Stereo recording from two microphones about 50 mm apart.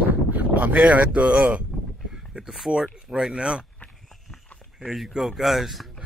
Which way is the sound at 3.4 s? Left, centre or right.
Centre.